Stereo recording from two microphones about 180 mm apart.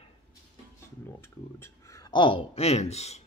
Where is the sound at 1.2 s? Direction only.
15° left (ahead or behind).